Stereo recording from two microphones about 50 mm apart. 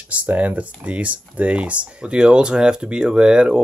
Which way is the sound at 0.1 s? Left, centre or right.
Right.